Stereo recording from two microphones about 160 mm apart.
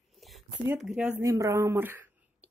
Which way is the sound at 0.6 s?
5° right (ahead or behind).